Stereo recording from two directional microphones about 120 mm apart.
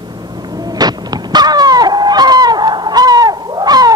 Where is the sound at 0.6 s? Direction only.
35° right (ahead or behind).